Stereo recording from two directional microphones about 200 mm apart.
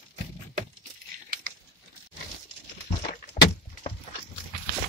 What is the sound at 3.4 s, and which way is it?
Door, 35° left (ahead or behind).